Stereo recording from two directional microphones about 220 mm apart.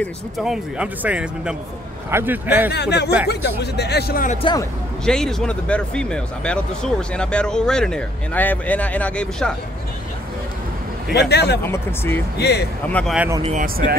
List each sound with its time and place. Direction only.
0.0 s a man's voice: centre (ahead or behind)
2.7 s speech: 50° left (ahead or behind)
4.4 s speech: 20° left (ahead or behind)
5.0 s speech: 5° left (ahead or behind)
11.1 s speech: 50° left (ahead or behind)
11.6 s speech: 10° left (ahead or behind)
12.4 s speech: 50° left (ahead or behind)
12.9 s speech: centre (ahead or behind)
13.4 s speech: 35° right (ahead or behind)